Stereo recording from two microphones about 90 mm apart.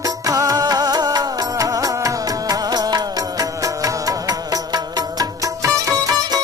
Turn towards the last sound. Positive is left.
turn(degrees=-40)  # may be behind; listen again after turning